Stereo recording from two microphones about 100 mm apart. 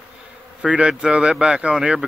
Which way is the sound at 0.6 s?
10° right (ahead or behind).